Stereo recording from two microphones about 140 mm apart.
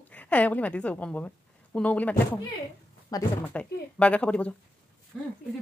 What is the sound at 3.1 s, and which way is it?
Speech, 25° left (ahead or behind).